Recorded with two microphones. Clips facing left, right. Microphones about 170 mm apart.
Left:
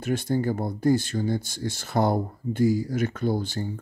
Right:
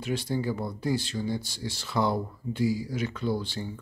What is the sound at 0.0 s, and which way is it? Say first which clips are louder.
Speech: left 4 dB; 50° left (ahead or behind).